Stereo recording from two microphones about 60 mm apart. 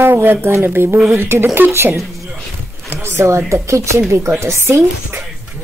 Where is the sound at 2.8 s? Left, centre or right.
Right.